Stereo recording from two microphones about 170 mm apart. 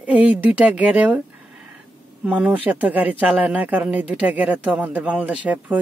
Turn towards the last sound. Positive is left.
turn(degrees=-10)  # may be behind; listen again after turning